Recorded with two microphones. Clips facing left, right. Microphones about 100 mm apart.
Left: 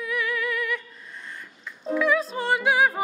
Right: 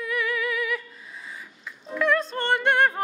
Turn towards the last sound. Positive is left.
turn(degrees=0)  # may be behind; listen again after turning